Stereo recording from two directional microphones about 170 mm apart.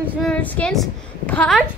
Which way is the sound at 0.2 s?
10° left (ahead or behind).